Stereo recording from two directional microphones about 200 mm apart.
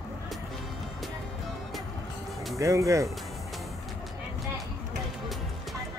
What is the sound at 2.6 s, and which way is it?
Speech, 15° right (ahead or behind).